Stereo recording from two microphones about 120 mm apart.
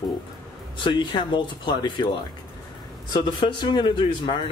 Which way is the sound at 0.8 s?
40° left (ahead or behind).